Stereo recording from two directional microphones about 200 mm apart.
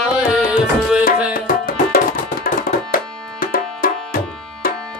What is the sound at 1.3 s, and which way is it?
Tabla, 45° left (ahead or behind).